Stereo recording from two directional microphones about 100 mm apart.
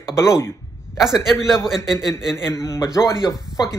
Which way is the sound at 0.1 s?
25° left (ahead or behind).